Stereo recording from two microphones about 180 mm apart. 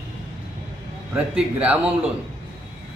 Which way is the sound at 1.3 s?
5° right (ahead or behind).